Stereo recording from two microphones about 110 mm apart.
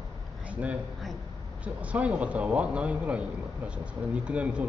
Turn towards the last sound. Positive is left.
turn(degrees=-10)  # may be behind; listen again after turning